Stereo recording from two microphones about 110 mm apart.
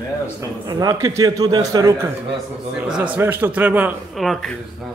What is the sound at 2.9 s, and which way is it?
A man's voice, 10° right (ahead or behind).